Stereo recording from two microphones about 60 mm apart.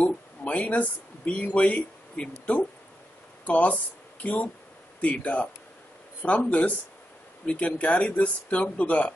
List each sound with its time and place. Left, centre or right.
0.0 s speech: left